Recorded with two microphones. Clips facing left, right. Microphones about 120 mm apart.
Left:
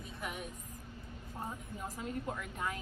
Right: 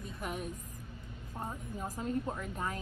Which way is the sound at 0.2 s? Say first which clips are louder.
Right 3 dB; 40° right (ahead or behind).